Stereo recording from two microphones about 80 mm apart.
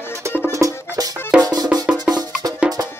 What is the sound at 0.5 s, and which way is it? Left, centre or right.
Music, right.